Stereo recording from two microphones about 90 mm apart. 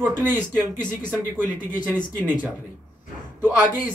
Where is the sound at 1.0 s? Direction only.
20° right (ahead or behind).